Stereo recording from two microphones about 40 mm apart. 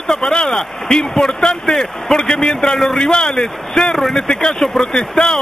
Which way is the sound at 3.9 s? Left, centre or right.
Centre.